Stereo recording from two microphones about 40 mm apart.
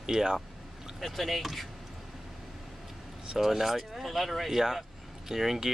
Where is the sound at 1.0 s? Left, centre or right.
Centre.